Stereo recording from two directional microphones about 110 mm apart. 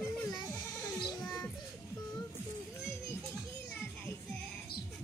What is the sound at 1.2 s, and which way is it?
Music, centre (ahead or behind).